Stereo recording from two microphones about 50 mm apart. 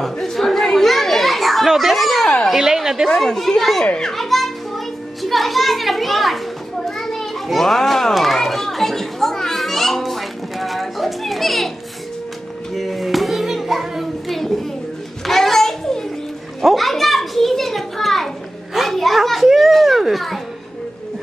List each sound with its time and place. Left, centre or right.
0.0 s children playing: centre
2.2 s speech: centre
2.5 s a woman's voice: centre
3.1 s speech: centre
3.8 s a child's voice: centre
4.1 s children playing: centre
12.7 s music: centre
15.2 s a sound: centre
16.6 s children playing: centre